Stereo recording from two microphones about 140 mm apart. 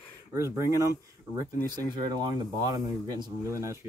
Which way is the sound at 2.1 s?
30° right (ahead or behind).